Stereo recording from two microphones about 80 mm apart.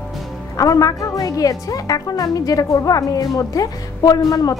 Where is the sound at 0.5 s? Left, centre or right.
Left.